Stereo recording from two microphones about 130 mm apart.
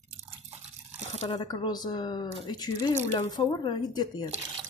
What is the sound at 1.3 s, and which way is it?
Speech, 30° left (ahead or behind).